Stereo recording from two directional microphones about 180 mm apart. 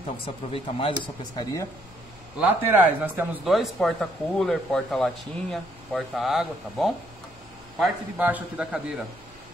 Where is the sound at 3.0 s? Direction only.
5° right (ahead or behind).